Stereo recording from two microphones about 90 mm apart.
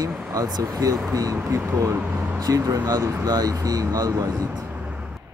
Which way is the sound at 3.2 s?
45° right (ahead or behind).